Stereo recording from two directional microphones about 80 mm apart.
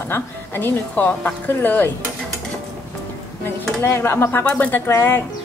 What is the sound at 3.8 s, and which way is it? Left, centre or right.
Speech, left.